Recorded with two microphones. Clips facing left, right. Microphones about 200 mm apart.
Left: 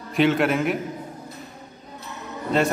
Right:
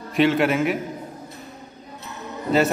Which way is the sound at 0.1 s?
Centre (ahead or behind).